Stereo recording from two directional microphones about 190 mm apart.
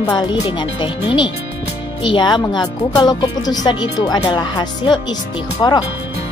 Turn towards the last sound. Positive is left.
turn(degrees=20)  # may be behind; listen again after turning